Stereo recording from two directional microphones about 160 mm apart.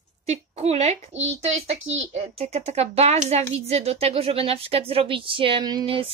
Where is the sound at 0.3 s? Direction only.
40° right (ahead or behind).